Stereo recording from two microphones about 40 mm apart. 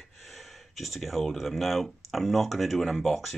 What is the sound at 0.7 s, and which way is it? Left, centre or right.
Speech, centre.